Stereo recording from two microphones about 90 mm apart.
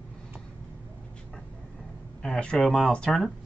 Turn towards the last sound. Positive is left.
turn(degrees=5)  # may be behind; listen again after turning